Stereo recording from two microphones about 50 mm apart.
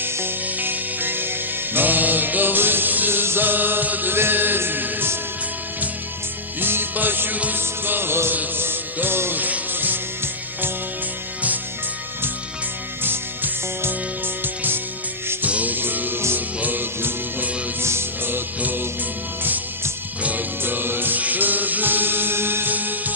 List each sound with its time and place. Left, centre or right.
0.0 s music: right
6.6 s music: right
9.4 s music: right
13.0 s music: right
17.8 s music: right
18.6 s music: right
20.2 s music: right